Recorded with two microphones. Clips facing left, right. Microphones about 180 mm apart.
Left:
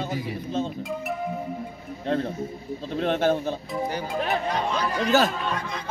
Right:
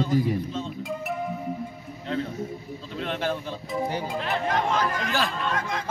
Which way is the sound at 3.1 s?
45° left (ahead or behind).